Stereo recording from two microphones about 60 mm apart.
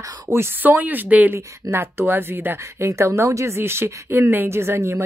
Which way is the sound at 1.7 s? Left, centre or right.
Right.